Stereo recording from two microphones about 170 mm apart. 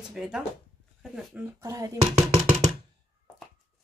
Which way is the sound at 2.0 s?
40° right (ahead or behind).